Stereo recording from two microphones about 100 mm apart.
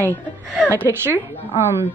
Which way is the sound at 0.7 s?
25° right (ahead or behind).